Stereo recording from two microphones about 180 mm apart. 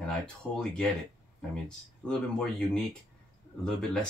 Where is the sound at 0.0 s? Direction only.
5° left (ahead or behind).